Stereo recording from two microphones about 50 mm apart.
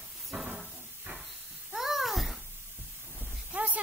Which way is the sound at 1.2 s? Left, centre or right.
Centre.